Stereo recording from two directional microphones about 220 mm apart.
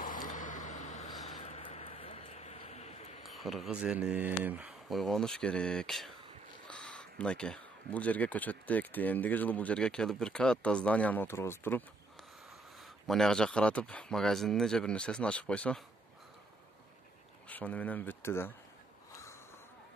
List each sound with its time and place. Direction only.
0.0 s vehicle: 40° left (ahead or behind)
1.4 s a sound: 30° left (ahead or behind)
3.3 s speech: centre (ahead or behind)
12.8 s speech: centre (ahead or behind)
17.5 s speech: 5° left (ahead or behind)